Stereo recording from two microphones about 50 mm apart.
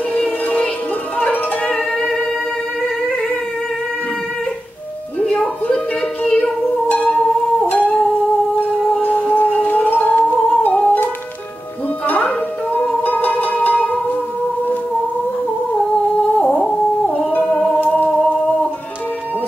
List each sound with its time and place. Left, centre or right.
1.7 s music: centre
5.2 s music: centre
6.2 s child singing: left
7.0 s music: centre
9.0 s music: left
12.1 s music: left
16.4 s a sound: centre
17.1 s music: left
17.5 s music: centre
17.7 s music: left